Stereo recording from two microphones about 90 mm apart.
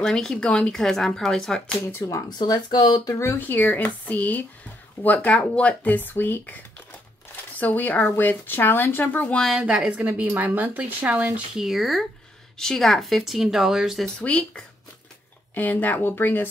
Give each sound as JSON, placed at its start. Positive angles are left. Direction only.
{"t": 0.0, "sound": "speech", "side_deg": 5}
{"t": 2.0, "sound": "speech", "side_deg": 40}
{"t": 3.2, "sound": "speech", "side_deg": 25}
{"t": 9.6, "sound": "a woman's voice", "side_deg": -10}
{"t": 11.5, "sound": "speech", "side_deg": 0}
{"t": 14.2, "sound": "speech", "side_deg": 15}